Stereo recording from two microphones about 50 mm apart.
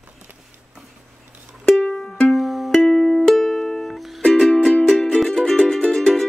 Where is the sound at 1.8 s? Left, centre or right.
Centre.